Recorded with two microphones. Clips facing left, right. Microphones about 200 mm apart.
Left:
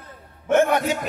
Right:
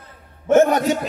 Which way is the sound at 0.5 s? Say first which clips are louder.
Right 4 dB; 35° right (ahead or behind).